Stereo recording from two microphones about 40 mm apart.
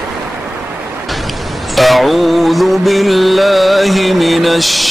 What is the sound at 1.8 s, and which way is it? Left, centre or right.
Music, centre.